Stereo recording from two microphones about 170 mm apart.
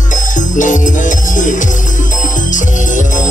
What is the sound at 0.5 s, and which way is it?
Music, 50° left (ahead or behind).